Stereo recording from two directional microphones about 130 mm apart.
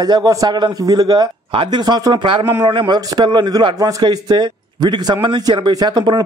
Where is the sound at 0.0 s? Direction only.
30° right (ahead or behind).